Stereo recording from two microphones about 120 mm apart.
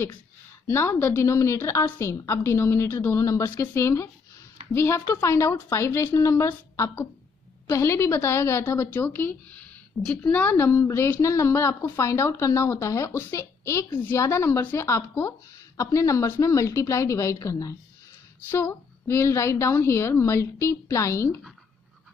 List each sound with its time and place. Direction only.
0.7 s a woman's voice: 20° left (ahead or behind)